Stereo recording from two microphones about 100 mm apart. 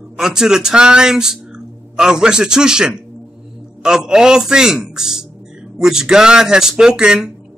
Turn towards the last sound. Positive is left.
turn(degrees=-5)  # may be behind; listen again after turning